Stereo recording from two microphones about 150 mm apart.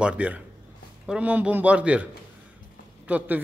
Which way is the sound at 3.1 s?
10° right (ahead or behind).